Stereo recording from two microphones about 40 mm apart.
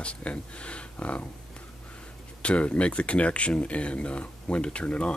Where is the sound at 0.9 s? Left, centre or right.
Left.